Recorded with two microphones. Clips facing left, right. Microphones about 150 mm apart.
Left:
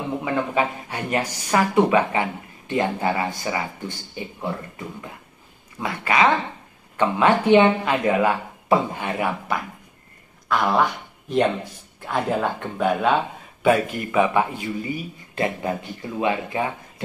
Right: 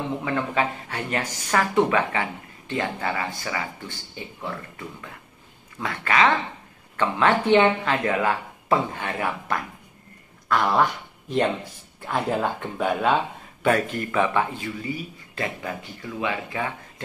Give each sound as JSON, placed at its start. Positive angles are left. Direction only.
{"t": 0.2, "sound": "a man's voice", "side_deg": 15}
{"t": 12.1, "sound": "a man's voice", "side_deg": 0}
{"t": 15.3, "sound": "speech", "side_deg": 25}